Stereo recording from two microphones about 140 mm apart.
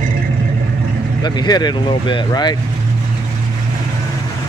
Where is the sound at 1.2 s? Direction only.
30° left (ahead or behind).